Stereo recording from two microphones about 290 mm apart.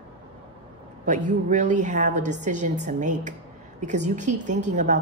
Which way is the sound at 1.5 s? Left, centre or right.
Right.